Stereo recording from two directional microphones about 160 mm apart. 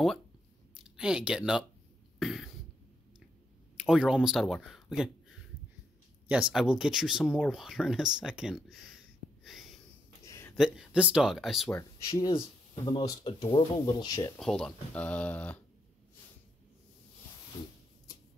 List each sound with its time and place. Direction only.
0.7 s speech: 5° right (ahead or behind)
2.1 s cough: centre (ahead or behind)
3.7 s speech: 5° right (ahead or behind)
6.2 s speech: 5° right (ahead or behind)
9.4 s a sound: centre (ahead or behind)
10.2 s a sound: 15° left (ahead or behind)
10.6 s speech: 5° right (ahead or behind)
11.7 s speech: 20° left (ahead or behind)
12.3 s speech: 30° left (ahead or behind)
13.7 s speech: 25° left (ahead or behind)
14.4 s speech: 5° left (ahead or behind)